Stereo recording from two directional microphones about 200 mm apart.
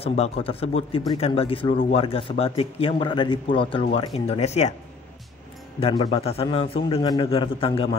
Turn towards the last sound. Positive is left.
turn(degrees=30)  # may be behind; listen again after turning